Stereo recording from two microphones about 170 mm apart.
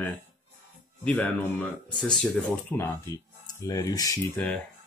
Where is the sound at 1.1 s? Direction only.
5° left (ahead or behind).